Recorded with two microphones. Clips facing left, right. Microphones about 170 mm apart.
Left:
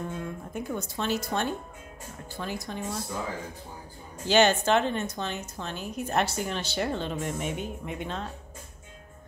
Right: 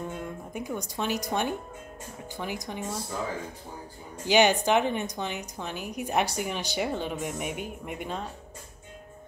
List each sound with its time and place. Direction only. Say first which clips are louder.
0.1 s speech: left 1 dB; 15° right (ahead or behind)
4.3 s speech: even; 15° right (ahead or behind)